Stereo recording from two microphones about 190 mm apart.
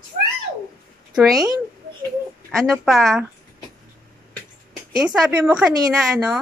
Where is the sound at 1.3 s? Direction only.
20° right (ahead or behind).